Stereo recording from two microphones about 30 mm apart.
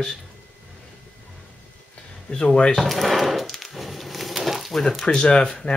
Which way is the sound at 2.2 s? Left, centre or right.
Left.